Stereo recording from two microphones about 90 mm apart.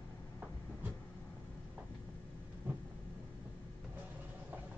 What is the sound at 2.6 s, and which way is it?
Vehicle, 20° right (ahead or behind).